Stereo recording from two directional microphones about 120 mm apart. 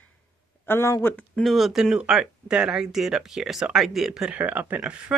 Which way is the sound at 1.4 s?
Centre (ahead or behind).